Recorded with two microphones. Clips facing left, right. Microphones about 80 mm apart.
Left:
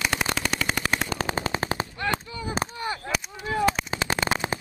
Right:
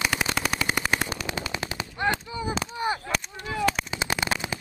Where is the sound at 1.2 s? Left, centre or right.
Left.